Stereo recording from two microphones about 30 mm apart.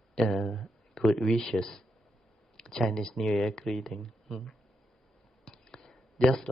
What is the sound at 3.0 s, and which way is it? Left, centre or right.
Speech, centre.